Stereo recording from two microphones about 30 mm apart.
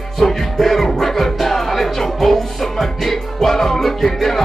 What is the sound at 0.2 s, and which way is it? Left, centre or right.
Music, centre.